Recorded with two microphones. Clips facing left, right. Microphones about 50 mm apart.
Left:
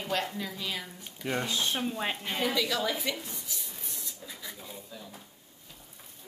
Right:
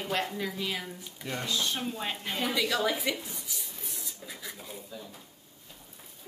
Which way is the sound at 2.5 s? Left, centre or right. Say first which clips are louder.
Right 1 dB; centre.